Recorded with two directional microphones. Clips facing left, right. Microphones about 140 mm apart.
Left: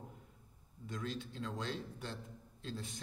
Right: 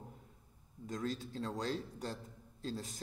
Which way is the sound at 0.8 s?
40° right (ahead or behind).